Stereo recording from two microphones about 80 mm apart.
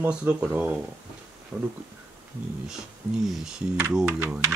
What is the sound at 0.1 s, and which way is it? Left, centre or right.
Speech, centre.